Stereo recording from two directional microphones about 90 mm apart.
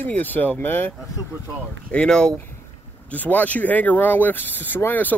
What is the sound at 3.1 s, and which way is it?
Speech, 20° left (ahead or behind).